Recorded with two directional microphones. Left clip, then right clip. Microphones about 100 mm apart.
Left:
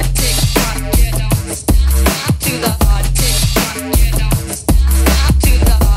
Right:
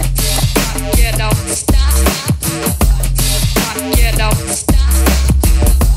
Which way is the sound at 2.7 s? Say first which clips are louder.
Left 1 dB; 10° left (ahead or behind).